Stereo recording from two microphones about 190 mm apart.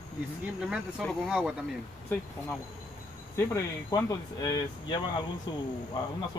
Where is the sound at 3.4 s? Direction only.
15° left (ahead or behind).